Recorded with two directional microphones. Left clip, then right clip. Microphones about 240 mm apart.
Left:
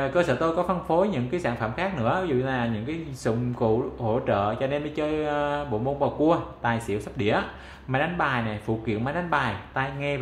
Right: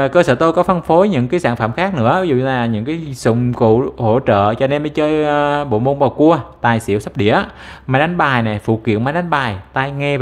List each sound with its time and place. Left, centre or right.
0.0 s speech: right